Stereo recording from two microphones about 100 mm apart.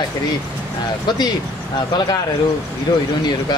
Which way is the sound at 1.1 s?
45° left (ahead or behind).